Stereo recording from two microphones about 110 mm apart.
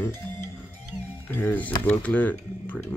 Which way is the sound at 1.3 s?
15° left (ahead or behind).